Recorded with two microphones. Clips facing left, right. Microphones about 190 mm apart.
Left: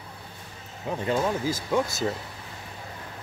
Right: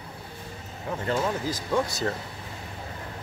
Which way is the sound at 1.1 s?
10° left (ahead or behind).